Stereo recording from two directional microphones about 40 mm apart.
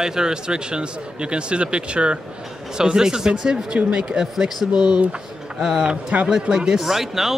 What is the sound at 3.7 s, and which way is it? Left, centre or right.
Speech, right.